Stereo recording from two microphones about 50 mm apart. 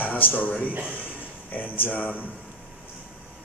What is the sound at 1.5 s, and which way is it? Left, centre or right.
Speech, left.